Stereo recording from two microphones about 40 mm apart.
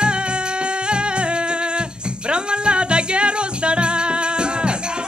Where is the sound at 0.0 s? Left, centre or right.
Right.